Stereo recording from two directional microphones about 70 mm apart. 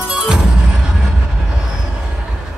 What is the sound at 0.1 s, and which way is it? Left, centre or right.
Music, centre.